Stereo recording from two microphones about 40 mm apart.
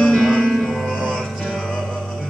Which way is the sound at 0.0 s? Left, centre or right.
Centre.